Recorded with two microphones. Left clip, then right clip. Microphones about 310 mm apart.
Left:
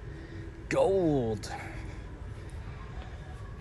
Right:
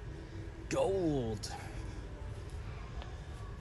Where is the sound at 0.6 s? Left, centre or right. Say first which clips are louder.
Left 7 dB; centre.